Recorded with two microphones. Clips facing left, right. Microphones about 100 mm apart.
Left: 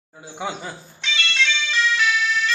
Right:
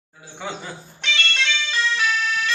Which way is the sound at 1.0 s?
50° right (ahead or behind).